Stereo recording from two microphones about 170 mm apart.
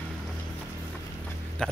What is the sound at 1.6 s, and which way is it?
Speech, 5° left (ahead or behind).